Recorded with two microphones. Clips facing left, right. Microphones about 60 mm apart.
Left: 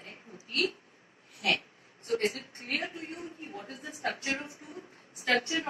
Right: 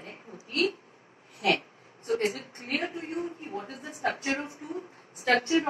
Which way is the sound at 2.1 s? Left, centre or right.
Right.